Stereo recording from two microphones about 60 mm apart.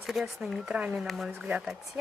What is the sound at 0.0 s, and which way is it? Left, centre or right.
Speech, centre.